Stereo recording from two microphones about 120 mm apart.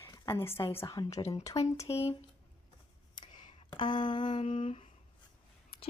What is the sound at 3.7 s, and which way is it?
Speech, 40° left (ahead or behind).